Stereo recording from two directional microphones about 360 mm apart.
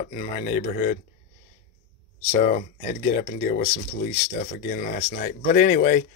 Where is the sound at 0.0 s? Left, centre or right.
Left.